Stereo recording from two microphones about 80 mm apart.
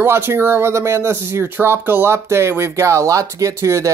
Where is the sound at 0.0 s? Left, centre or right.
Right.